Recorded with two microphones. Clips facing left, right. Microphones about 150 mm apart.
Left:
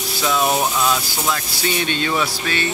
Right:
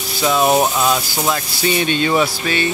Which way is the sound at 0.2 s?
20° right (ahead or behind).